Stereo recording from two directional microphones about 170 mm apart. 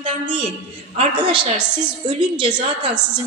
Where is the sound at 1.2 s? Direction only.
30° right (ahead or behind).